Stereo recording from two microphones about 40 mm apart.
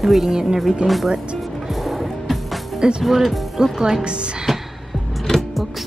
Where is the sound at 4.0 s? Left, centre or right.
Right.